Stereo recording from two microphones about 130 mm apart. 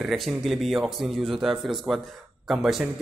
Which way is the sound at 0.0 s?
Centre (ahead or behind).